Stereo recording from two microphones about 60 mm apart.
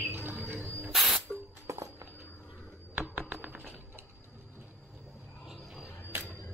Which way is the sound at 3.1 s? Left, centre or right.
Right.